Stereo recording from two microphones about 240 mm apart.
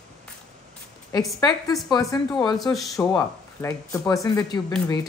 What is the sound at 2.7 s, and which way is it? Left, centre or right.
Speech, centre.